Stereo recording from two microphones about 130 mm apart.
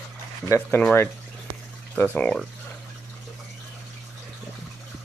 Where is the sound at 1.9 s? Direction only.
10° left (ahead or behind).